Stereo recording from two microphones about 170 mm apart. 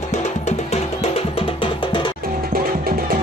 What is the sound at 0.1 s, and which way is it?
Music, 40° left (ahead or behind).